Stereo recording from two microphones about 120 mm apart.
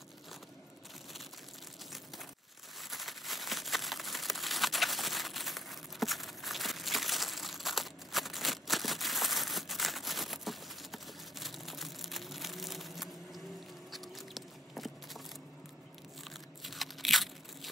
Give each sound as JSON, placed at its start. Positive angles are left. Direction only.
{"t": 2.8, "sound": "crumpling", "side_deg": 0}
{"t": 13.9, "sound": "a sound", "side_deg": 0}
{"t": 16.3, "sound": "crunch", "side_deg": 0}